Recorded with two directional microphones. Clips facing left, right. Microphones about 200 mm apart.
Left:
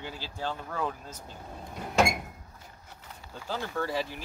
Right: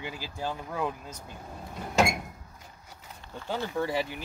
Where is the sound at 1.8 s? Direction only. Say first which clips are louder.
Even; centre (ahead or behind).